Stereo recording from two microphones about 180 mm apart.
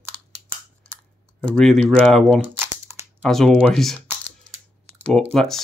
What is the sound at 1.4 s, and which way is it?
Speech, 5° left (ahead or behind).